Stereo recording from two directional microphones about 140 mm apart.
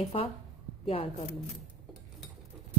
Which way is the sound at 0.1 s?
45° left (ahead or behind).